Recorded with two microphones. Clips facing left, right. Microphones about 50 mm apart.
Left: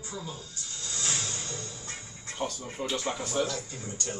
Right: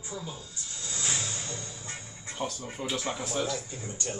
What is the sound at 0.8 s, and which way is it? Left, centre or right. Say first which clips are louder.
Music: even; right.